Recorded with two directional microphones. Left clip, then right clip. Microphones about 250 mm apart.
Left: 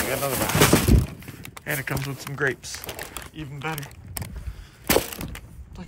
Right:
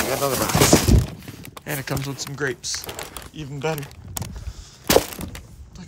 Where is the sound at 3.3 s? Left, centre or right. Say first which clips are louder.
Right 7 dB; centre.